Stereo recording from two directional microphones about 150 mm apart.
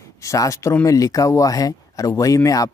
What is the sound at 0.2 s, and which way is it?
Speech, 20° left (ahead or behind).